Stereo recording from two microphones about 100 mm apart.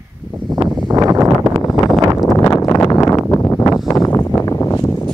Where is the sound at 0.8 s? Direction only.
40° right (ahead or behind).